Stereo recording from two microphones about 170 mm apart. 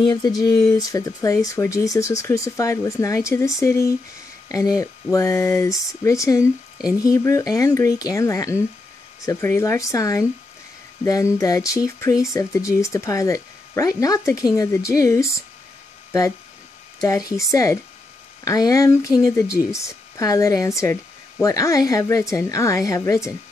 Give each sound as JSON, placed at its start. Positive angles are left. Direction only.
{"t": 0.1, "sound": "speech", "side_deg": 25}